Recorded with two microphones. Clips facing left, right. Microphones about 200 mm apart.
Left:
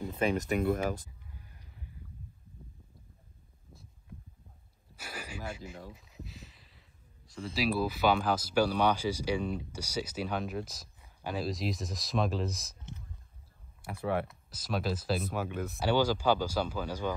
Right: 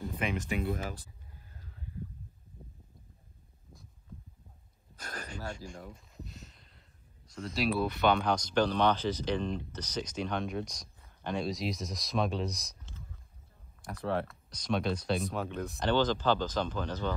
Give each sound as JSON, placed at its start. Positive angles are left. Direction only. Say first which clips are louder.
{"t": 0.2, "sound": "speech", "louder": "left 5 dB", "side_deg": 40}
{"t": 4.9, "sound": "a sound", "louder": "even", "side_deg": 10}
{"t": 7.2, "sound": "speech", "louder": "even", "side_deg": 0}
{"t": 13.8, "sound": "speech", "louder": "left 1 dB", "side_deg": 10}